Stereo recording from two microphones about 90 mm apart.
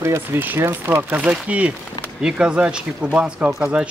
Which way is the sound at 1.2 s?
15° right (ahead or behind).